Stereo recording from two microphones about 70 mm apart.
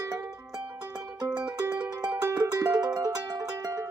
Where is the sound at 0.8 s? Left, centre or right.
Right.